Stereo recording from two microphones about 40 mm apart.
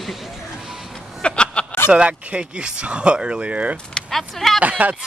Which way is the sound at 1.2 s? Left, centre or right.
Left.